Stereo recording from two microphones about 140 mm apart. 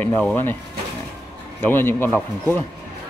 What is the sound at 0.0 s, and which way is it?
Speech, 10° left (ahead or behind).